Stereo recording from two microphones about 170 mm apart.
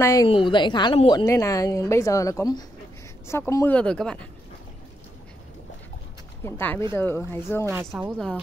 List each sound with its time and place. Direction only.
0.0 s a woman's voice: 20° left (ahead or behind)
6.4 s speech: 15° left (ahead or behind)
7.8 s speech: centre (ahead or behind)